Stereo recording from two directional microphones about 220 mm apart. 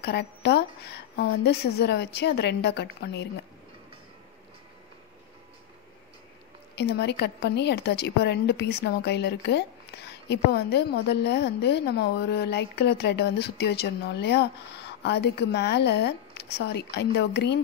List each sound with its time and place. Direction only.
0.0 s a woman's voice: 50° left (ahead or behind)
6.7 s a woman's voice: 50° left (ahead or behind)